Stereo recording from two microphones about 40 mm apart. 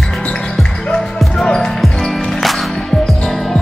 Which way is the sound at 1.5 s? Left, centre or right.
Centre.